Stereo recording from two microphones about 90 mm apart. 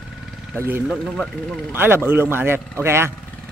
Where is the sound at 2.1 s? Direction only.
25° right (ahead or behind).